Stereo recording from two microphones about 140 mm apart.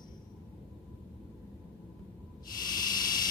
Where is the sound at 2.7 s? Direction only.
30° left (ahead or behind).